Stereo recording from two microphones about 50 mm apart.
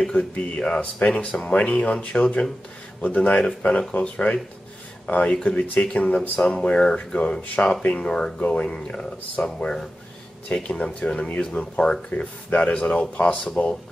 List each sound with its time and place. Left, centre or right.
0.0 s speech: centre
0.7 s speech: left
2.2 s speech: centre
3.0 s speech: left
8.4 s speech: left
8.6 s speech: centre